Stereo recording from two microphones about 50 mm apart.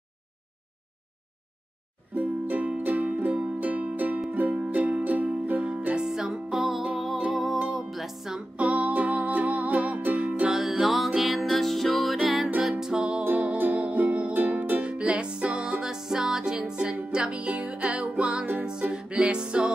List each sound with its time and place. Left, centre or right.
2.1 s music: right
5.9 s music: centre
8.5 s music: right
10.5 s music: centre
13.2 s music: right
18.7 s music: right